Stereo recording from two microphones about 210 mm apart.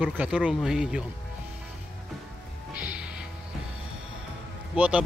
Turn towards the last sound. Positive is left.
turn(degrees=-5)  # may be behind; listen again after turning